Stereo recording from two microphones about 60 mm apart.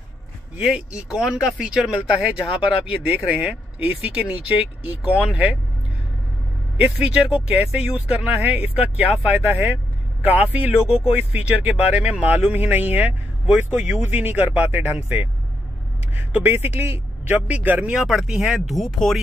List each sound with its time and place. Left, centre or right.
0.6 s speech: centre
1.2 s speech: centre
7.2 s speech: centre; by 15.2 s right
16.4 s a man's voice: right
18.0 s speech: centre